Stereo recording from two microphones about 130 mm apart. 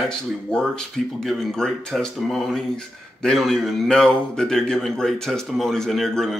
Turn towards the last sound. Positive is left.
turn(degrees=0)  # may be behind; listen again after turning